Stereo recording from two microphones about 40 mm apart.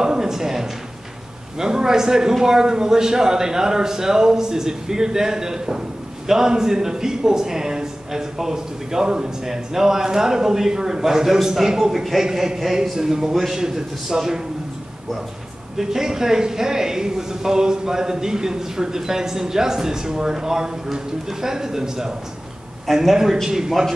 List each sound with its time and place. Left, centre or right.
0.0 s a sound: centre
1.6 s a man's voice: centre
15.8 s a man's voice: centre
23.1 s a man's voice: centre